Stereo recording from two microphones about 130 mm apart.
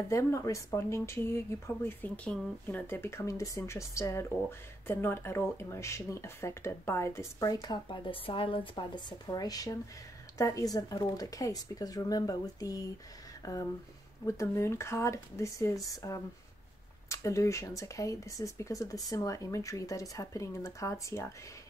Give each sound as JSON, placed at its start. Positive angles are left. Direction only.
{"t": 0.1, "sound": "speech", "side_deg": 20}
{"t": 14.2, "sound": "speech", "side_deg": 25}